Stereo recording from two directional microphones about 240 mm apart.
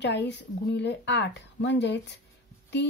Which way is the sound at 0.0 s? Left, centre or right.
Left.